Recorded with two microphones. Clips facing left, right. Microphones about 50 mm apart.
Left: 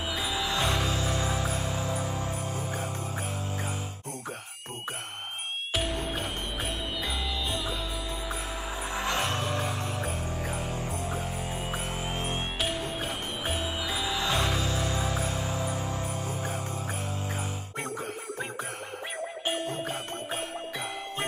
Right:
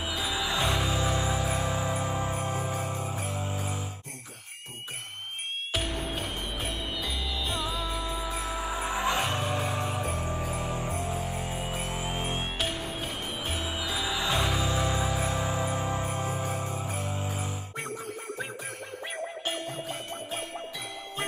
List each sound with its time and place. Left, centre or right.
0.1 s music: centre
1.5 s music: centre
5.8 s music: centre
7.5 s music: centre
11.4 s music: centre
11.7 s music: left
12.0 s music: centre
12.5 s music: centre
15.1 s music: right
19.4 s music: left
19.8 s music: left